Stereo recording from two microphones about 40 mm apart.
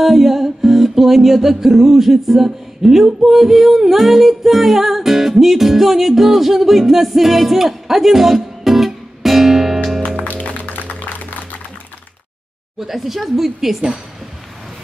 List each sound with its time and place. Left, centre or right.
0.0 s music: centre
10.0 s music: left
12.7 s a woman's voice: centre